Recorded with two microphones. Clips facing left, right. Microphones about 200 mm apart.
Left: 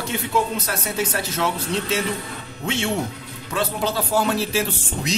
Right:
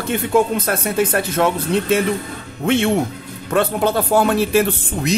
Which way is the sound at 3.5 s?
55° right (ahead or behind).